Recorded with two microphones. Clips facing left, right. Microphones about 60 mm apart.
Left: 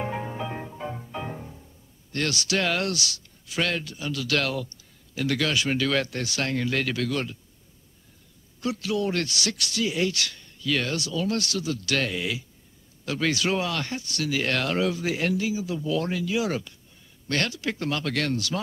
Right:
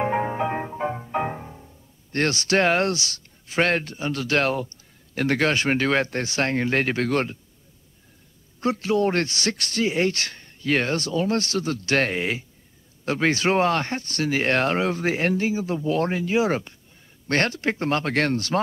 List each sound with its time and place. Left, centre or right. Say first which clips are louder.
0.0 s music: right 8 dB; right
2.1 s speech: right 5 dB; right
8.5 s speech: right 5 dB; right